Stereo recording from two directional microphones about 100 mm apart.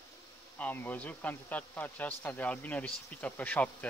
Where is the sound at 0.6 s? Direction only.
20° left (ahead or behind).